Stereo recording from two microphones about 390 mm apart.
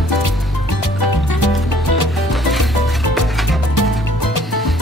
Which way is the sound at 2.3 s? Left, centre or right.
Centre.